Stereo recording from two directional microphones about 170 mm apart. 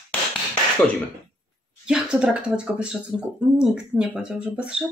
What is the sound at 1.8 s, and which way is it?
A woman's voice, 5° right (ahead or behind).